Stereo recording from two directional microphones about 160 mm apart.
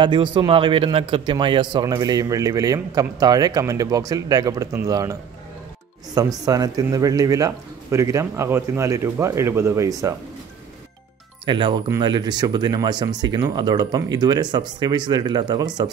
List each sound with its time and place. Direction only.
0.0 s a man's voice: 30° right (ahead or behind)
6.4 s a man's voice: 20° right (ahead or behind)
11.4 s a man's voice: 30° right (ahead or behind)